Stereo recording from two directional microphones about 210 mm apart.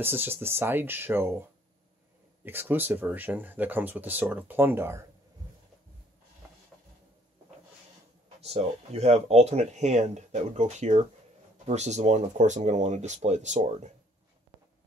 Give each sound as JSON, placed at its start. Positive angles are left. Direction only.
{"t": 0.0, "sound": "speech", "side_deg": -10}
{"t": 2.4, "sound": "speech", "side_deg": -10}
{"t": 8.4, "sound": "speech", "side_deg": -30}